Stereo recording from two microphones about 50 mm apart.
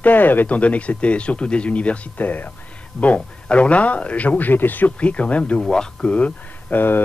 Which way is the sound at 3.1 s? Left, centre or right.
Left.